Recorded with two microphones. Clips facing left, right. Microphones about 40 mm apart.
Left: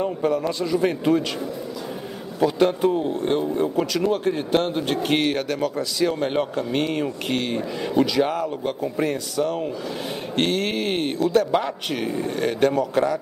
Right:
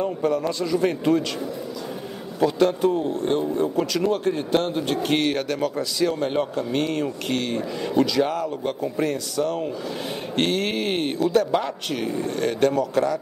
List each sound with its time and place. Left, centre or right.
0.0 s speech: centre
2.6 s speech: centre
6.0 s speech: centre
10.3 s music: centre
11.5 s speech: centre